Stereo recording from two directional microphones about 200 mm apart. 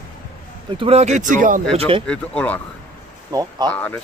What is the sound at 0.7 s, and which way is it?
Speech, 30° right (ahead or behind).